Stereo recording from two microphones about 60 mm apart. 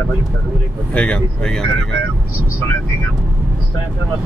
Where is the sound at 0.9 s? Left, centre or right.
Centre.